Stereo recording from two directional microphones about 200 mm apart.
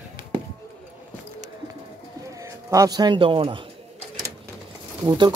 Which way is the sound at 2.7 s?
20° right (ahead or behind).